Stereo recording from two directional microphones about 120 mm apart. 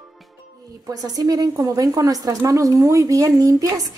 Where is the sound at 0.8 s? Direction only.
30° right (ahead or behind).